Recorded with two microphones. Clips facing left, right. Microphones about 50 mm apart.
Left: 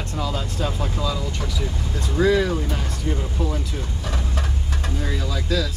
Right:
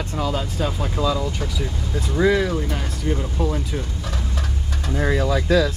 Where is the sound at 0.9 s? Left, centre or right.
Centre.